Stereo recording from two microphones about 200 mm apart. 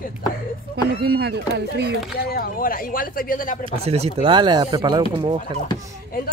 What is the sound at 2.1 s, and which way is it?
Speech, 50° left (ahead or behind).